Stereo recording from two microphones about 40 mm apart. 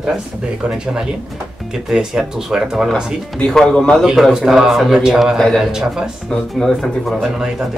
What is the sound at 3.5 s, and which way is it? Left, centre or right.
Speech, centre.